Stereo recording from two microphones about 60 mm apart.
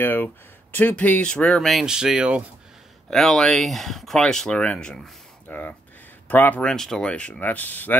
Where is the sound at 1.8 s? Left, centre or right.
Centre.